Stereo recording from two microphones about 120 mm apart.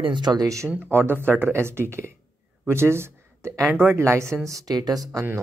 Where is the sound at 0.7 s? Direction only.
15° right (ahead or behind).